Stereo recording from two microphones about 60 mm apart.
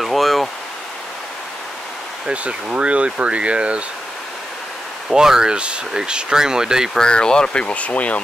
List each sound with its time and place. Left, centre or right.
0.0 s a sound: centre
2.2 s speech: right
5.1 s speech: centre
6.9 s speech: centre